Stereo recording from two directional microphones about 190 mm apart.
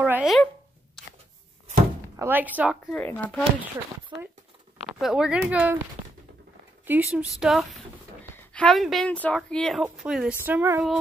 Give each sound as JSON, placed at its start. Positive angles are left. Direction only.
{"t": 0.0, "sound": "speech", "side_deg": -5}
{"t": 2.1, "sound": "speech", "side_deg": -10}
{"t": 2.9, "sound": "speech", "side_deg": 10}
{"t": 4.1, "sound": "speech", "side_deg": -20}
{"t": 4.9, "sound": "speech", "side_deg": -5}
{"t": 6.9, "sound": "speech", "side_deg": -10}